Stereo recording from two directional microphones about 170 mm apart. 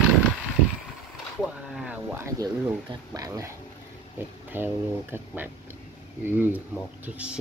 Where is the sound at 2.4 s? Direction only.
20° right (ahead or behind).